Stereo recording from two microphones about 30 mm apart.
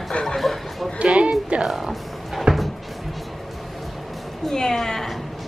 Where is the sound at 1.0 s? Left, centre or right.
Right.